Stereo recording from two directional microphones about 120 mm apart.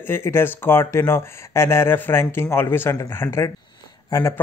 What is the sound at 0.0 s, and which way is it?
Speech, 20° left (ahead or behind).